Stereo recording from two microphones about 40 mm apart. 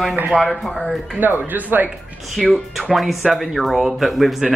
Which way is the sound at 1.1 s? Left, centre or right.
Right.